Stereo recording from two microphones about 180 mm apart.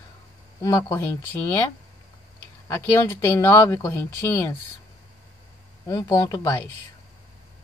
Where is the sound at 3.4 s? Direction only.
15° left (ahead or behind).